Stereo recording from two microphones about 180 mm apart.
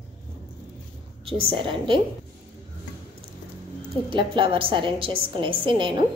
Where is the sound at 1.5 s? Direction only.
30° right (ahead or behind).